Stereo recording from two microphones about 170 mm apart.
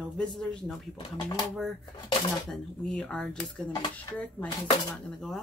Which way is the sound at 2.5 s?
5° left (ahead or behind).